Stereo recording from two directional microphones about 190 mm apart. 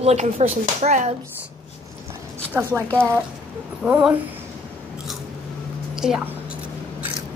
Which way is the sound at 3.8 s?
5° right (ahead or behind).